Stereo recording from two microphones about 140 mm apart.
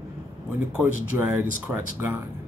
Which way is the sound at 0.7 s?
15° right (ahead or behind).